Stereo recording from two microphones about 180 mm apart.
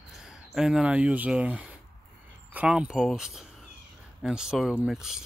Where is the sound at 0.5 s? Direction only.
5° right (ahead or behind).